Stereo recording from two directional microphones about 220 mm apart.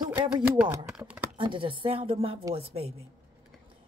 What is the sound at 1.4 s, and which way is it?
A woman's voice, 20° right (ahead or behind).